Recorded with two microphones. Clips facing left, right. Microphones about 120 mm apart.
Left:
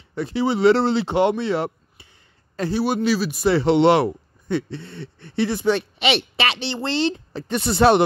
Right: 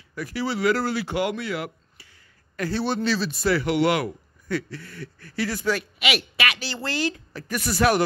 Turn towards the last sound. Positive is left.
turn(degrees=25)  # may be behind; listen again after turning